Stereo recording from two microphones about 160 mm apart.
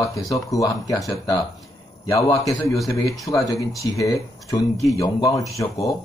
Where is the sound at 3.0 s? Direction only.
20° left (ahead or behind).